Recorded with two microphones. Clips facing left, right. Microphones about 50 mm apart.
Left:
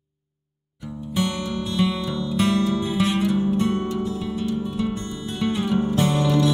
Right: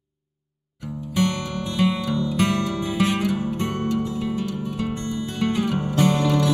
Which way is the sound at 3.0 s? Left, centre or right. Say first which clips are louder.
Even; right.